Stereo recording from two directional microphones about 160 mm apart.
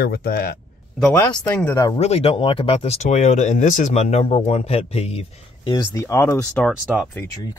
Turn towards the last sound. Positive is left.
turn(degrees=0)  # may be behind; listen again after turning